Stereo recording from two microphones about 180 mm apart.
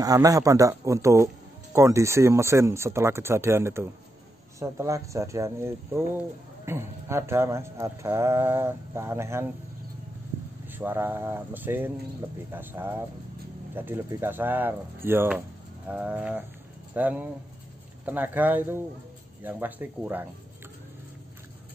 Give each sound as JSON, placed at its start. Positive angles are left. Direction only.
{"t": 0.0, "sound": "speech", "side_deg": -20}
{"t": 10.7, "sound": "speech", "side_deg": -10}